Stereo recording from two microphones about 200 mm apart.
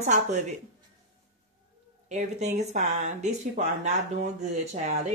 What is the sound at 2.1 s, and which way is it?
Speech, 35° right (ahead or behind).